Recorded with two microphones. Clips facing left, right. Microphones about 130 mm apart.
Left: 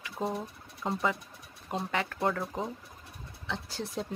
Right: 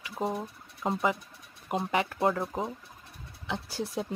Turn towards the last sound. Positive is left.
turn(degrees=-10)  # may be behind; listen again after turning